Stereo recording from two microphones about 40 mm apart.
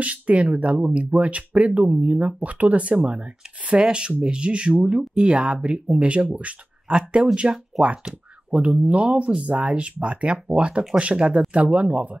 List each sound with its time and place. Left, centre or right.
0.0 s speech: right
7.7 s speech: centre
8.5 s speech: right
9.5 s speech: right